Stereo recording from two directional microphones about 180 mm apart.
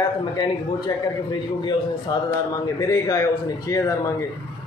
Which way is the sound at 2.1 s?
20° left (ahead or behind).